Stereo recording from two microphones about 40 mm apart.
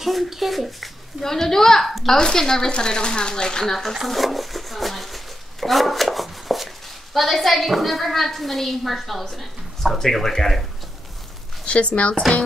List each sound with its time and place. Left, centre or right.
0.0 s a woman's voice: centre
1.2 s a woman's voice: centre
2.1 s speech: centre
3.6 s a woman's voice: centre
4.1 s a sound: centre
7.2 s a woman's voice: centre
11.6 s speech: left